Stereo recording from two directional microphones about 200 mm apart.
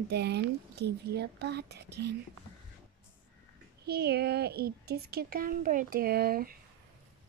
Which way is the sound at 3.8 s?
55° right (ahead or behind).